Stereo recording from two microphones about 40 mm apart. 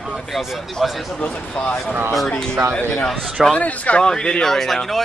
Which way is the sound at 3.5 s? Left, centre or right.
Left.